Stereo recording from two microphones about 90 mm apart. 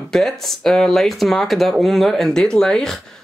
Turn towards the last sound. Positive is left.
turn(degrees=5)  # may be behind; listen again after turning